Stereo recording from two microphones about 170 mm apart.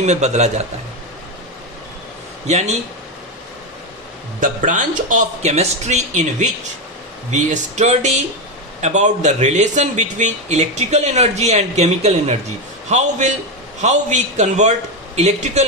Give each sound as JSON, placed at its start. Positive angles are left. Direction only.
{"t": 0.0, "sound": "a man's voice", "side_deg": -40}
{"t": 2.4, "sound": "a man's voice", "side_deg": -40}
{"t": 4.4, "sound": "a man's voice", "side_deg": -50}